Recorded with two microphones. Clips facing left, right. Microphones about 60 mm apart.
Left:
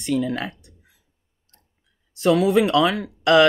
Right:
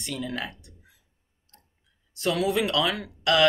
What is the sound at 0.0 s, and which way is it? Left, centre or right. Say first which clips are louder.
Speech: left 10 dB; left.